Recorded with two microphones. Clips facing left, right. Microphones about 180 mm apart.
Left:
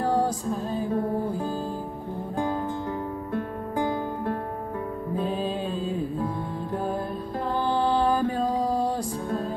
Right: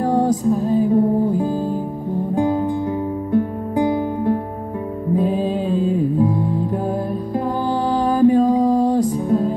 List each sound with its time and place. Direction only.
0.1 s music: 20° right (ahead or behind)
8.0 s music: 20° right (ahead or behind)